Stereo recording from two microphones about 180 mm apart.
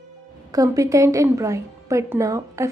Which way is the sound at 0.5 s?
20° right (ahead or behind).